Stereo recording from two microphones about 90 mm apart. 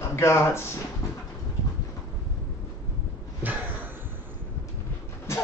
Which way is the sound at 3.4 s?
20° right (ahead or behind).